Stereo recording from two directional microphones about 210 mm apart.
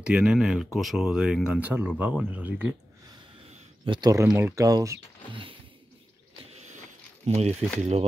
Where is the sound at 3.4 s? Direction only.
30° right (ahead or behind).